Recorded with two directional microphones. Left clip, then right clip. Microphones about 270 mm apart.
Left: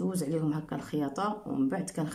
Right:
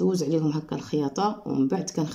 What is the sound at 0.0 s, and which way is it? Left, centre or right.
Speech, centre.